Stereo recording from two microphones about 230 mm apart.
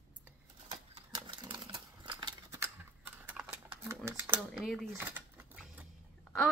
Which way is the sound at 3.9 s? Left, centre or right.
Centre.